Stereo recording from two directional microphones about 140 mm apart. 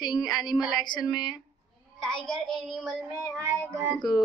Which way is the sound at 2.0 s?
5° left (ahead or behind).